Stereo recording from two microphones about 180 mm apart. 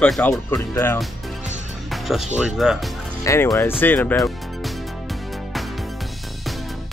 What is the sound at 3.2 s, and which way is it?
Speech, 15° left (ahead or behind).